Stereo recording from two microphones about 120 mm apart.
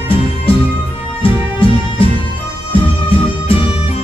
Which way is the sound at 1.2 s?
50° left (ahead or behind).